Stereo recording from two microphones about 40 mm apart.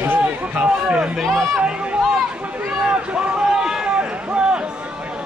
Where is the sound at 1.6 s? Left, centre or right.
Right.